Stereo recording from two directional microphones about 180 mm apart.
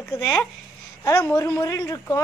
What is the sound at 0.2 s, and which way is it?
Speech, 20° left (ahead or behind).